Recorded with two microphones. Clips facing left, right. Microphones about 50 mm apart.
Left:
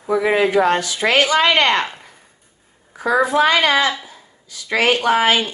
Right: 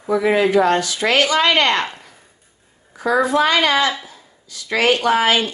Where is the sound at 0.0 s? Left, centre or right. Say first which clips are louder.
Even; centre.